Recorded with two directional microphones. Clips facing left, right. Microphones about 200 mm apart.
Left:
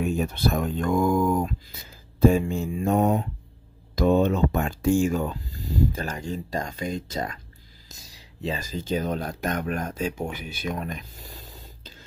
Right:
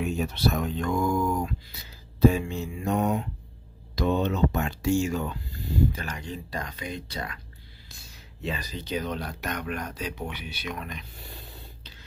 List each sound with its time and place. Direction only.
0.0 s speech: 50° left (ahead or behind)
3.9 s speech: 50° left (ahead or behind)